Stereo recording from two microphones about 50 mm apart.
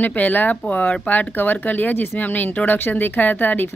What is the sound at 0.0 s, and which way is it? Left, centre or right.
Speech, left.